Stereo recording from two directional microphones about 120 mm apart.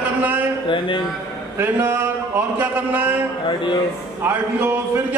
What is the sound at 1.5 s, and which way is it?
A man's voice, 20° right (ahead or behind).